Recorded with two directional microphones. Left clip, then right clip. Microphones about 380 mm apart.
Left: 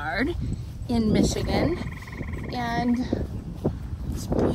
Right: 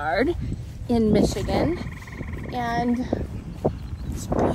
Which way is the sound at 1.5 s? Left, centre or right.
Centre.